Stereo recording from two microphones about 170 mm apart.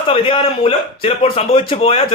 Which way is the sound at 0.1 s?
30° left (ahead or behind).